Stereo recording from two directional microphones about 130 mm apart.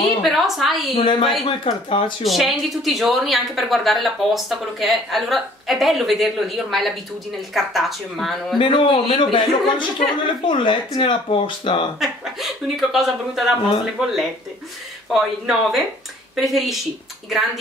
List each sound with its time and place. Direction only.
0.2 s a woman's voice: centre (ahead or behind)
0.9 s speech: 40° left (ahead or behind)
2.2 s a woman's voice: centre (ahead or behind)
8.5 s speech: 40° left (ahead or behind)
12.0 s a woman's voice: centre (ahead or behind)